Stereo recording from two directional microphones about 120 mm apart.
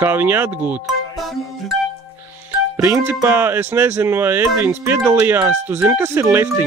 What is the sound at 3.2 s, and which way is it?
Speech, 20° right (ahead or behind).